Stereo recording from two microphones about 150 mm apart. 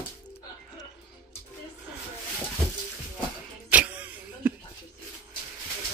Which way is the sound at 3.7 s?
10° right (ahead or behind).